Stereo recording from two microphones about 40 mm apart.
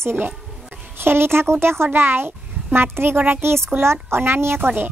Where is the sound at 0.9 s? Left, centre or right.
Right.